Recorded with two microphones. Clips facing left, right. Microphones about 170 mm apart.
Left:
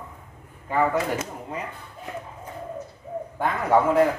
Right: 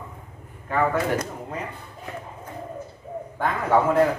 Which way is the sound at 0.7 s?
10° left (ahead or behind).